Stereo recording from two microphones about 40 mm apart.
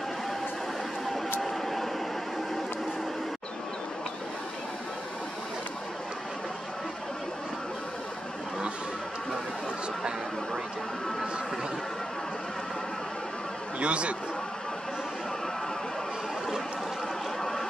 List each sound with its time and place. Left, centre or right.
1.4 s vehicle: centre
13.7 s a sound: right
17.4 s boat: centre